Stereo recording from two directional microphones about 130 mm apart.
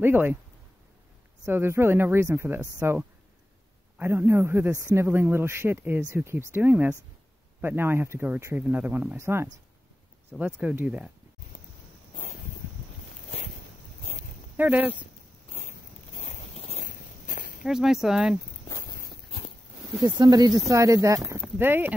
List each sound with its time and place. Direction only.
0.0 s a man's voice: 15° right (ahead or behind)
1.4 s a man's voice: 15° right (ahead or behind)
14.6 s a man's voice: 15° right (ahead or behind)
16.2 s a sound: 60° left (ahead or behind)
16.8 s walk: 90° left
17.6 s speech: 5° right (ahead or behind)
20.0 s speech: 30° right (ahead or behind); by 21.9 s 15° right (ahead or behind)